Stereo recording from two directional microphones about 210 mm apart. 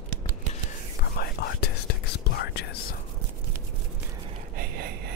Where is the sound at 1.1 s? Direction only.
50° left (ahead or behind).